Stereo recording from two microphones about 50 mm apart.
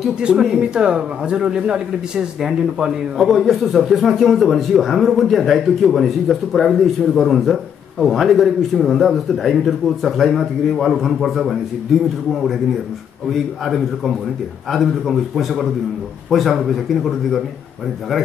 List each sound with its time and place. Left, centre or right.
0.2 s a man's voice: centre
3.2 s a man's voice: centre
13.3 s a man's voice: centre